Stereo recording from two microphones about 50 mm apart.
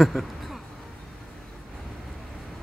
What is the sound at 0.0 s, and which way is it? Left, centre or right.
Speech, centre.